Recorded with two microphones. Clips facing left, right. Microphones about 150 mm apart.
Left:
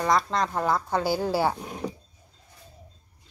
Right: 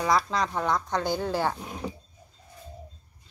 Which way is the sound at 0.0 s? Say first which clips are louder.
Left 1 dB; centre (ahead or behind).